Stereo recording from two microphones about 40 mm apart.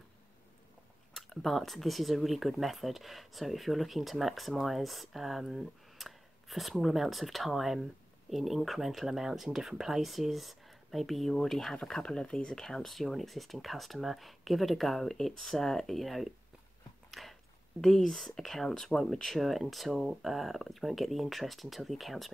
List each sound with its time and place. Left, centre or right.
1.1 s speech: centre
12.0 s speech: left
12.8 s speech: centre
17.1 s a sound: centre
17.7 s speech: centre